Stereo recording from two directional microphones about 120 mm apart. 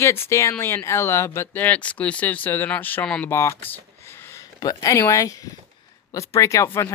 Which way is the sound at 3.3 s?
20° left (ahead or behind).